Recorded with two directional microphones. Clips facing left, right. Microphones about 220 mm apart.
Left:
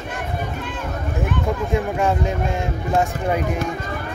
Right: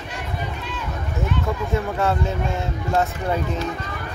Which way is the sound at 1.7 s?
15° left (ahead or behind).